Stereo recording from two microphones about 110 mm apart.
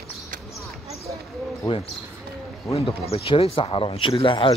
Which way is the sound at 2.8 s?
65° left (ahead or behind).